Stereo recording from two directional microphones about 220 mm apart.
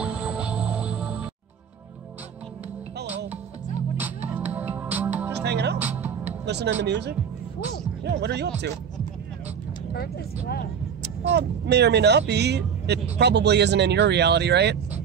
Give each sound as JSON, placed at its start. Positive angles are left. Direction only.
{"t": 0.0, "sound": "music", "side_deg": -5}
{"t": 4.0, "sound": "music", "side_deg": -10}
{"t": 5.4, "sound": "music", "side_deg": -50}
{"t": 5.8, "sound": "music", "side_deg": -5}
{"t": 6.4, "sound": "speech", "side_deg": -50}
{"t": 9.9, "sound": "speech", "side_deg": 45}
{"t": 11.3, "sound": "speech", "side_deg": -50}